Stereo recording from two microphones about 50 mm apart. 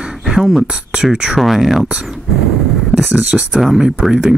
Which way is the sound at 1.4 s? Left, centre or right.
Centre.